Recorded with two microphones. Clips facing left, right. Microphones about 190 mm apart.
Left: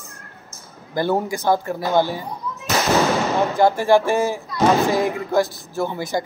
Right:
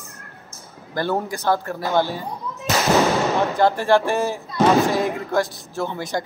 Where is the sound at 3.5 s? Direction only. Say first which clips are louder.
Left 3 dB; 10° left (ahead or behind).